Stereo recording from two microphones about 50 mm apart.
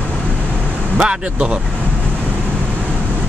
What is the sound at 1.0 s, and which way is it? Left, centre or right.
Speech, right.